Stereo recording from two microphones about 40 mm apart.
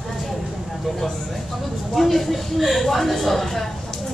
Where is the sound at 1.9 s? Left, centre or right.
Centre.